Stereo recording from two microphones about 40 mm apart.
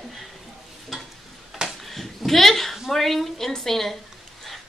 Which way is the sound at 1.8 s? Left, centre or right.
Centre.